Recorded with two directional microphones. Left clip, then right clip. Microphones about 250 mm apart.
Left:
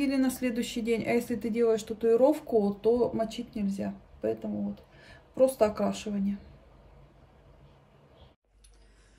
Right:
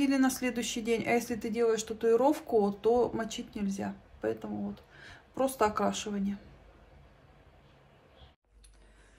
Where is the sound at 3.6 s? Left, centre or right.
Right.